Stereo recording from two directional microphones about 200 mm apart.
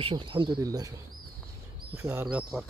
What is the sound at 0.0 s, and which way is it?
Speech, 25° right (ahead or behind).